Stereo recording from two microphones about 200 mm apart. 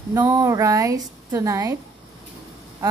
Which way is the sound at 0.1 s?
15° right (ahead or behind).